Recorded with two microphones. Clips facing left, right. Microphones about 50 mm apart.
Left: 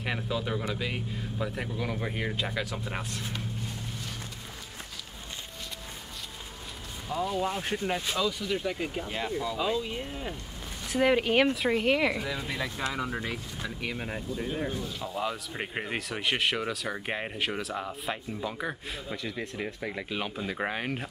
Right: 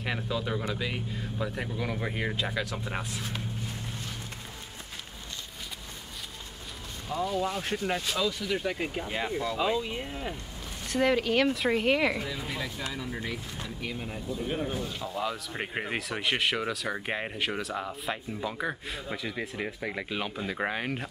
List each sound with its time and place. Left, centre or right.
0.0 s speech: centre
7.1 s speech: centre
8.5 s speech: centre
10.9 s speech: centre
11.1 s speech: centre
11.5 s speech: centre
12.5 s speech: left
14.8 s speech: centre
20.2 s speech: centre